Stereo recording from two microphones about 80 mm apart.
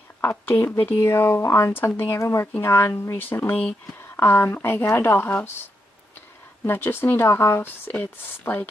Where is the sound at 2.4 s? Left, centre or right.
Left.